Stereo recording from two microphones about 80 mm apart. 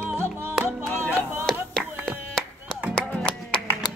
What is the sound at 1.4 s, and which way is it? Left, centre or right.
Clapping, centre.